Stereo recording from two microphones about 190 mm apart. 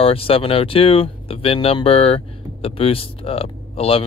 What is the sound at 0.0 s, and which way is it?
Speech, 30° left (ahead or behind).